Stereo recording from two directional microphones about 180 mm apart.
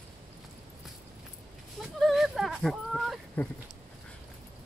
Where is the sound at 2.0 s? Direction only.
Centre (ahead or behind).